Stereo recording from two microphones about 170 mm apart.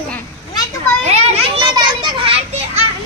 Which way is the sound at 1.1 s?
30° right (ahead or behind).